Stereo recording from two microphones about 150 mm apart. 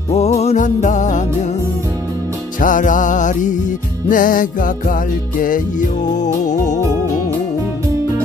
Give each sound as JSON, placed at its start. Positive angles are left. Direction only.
{"t": 0.1, "sound": "music", "side_deg": 45}
{"t": 2.6, "sound": "music", "side_deg": 60}